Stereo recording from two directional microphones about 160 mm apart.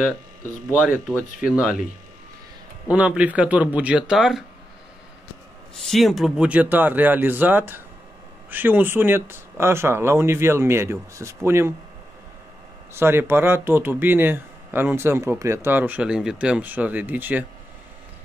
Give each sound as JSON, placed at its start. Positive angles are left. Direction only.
{"t": 0.7, "sound": "speech", "side_deg": -10}
{"t": 2.9, "sound": "speech", "side_deg": -5}
{"t": 5.8, "sound": "speech", "side_deg": 0}
{"t": 12.9, "sound": "speech", "side_deg": -15}